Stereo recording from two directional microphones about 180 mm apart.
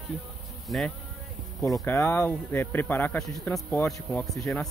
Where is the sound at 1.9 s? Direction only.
15° left (ahead or behind).